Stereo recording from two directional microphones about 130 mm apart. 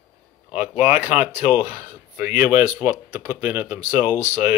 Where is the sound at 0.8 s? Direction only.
15° right (ahead or behind).